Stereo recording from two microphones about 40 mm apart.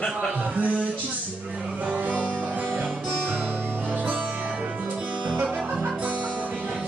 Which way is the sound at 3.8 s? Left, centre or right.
Right.